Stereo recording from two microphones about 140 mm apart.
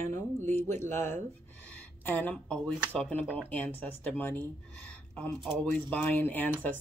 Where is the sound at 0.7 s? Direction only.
15° left (ahead or behind).